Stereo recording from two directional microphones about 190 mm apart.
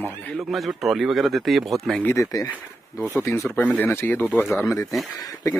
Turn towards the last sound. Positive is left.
turn(degrees=20)  # may be behind; listen again after turning